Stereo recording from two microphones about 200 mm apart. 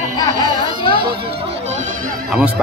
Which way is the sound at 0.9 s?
50° right (ahead or behind).